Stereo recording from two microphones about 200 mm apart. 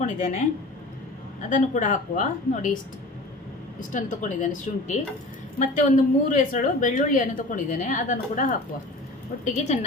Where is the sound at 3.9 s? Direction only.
40° left (ahead or behind).